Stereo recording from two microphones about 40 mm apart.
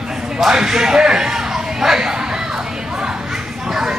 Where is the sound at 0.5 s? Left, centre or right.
Centre.